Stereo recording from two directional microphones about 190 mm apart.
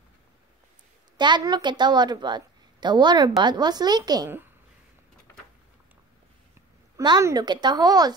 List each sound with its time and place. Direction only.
1.1 s a woman's voice: 25° right (ahead or behind)
7.0 s a woman's voice: 20° right (ahead or behind)